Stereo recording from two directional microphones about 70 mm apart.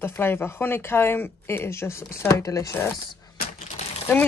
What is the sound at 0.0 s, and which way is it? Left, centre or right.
Speech, left.